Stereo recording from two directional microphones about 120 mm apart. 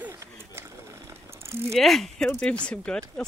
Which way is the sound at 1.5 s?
20° right (ahead or behind).